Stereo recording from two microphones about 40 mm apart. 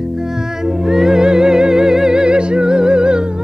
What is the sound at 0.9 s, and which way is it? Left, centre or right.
Music, centre.